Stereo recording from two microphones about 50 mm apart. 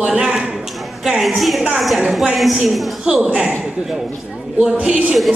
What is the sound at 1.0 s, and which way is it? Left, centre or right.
Speech, centre.